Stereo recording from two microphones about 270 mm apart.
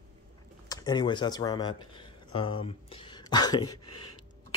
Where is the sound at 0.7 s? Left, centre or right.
Centre.